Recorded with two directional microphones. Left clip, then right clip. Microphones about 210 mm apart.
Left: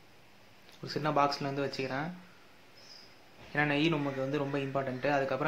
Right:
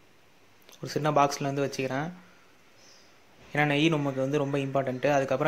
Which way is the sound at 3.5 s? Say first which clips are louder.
Right 4 dB; 35° right (ahead or behind).